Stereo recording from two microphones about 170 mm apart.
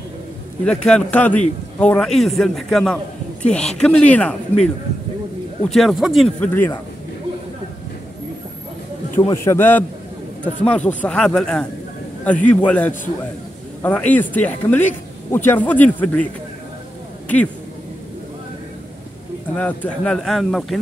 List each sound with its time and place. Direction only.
0.7 s a man's voice: 5° left (ahead or behind)
5.7 s a man's voice: centre (ahead or behind)
9.3 s speech: 15° left (ahead or behind)
19.6 s a man's voice: 5° left (ahead or behind)